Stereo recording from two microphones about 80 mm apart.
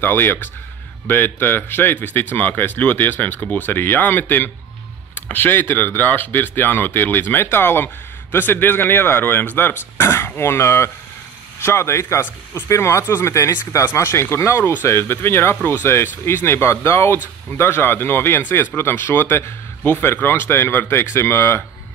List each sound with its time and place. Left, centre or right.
0.0 s speech: left